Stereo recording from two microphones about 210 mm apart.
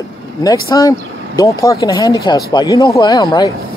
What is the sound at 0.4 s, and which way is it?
Speech, 15° left (ahead or behind).